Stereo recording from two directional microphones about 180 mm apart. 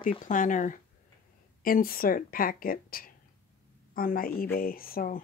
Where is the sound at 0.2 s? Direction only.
45° left (ahead or behind).